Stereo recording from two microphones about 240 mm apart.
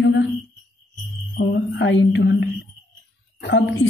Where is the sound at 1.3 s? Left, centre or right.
Left.